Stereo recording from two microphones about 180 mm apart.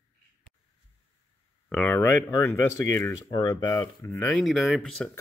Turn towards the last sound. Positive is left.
turn(degrees=5)  # may be behind; listen again after turning